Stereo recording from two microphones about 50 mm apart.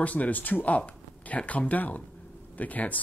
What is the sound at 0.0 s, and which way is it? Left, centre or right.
Speech, left.